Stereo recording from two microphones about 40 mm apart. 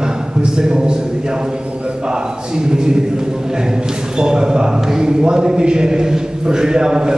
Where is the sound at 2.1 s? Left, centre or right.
Centre.